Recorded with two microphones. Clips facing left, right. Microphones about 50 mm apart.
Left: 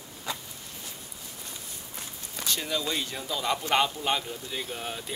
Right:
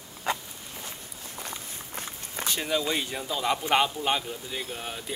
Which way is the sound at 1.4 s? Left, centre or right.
Right.